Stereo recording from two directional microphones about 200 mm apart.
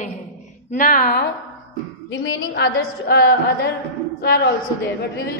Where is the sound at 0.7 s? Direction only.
40° left (ahead or behind).